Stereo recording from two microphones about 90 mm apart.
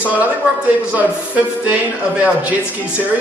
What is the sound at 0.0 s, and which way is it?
A man's voice, 15° right (ahead or behind).